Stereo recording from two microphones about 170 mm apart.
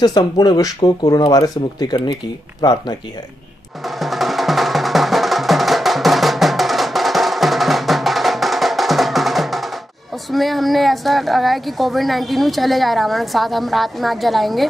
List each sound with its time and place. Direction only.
0.0 s speech: 25° left (ahead or behind)
3.8 s music: centre (ahead or behind)
10.3 s a woman's voice: centre (ahead or behind)